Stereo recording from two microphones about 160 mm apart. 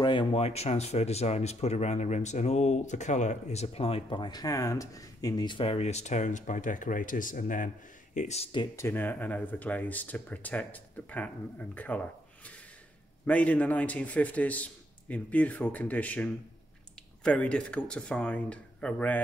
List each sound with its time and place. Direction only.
0.0 s speech: 30° left (ahead or behind); by 8.5 s 45° left (ahead or behind)
8.7 s speech: 15° left (ahead or behind)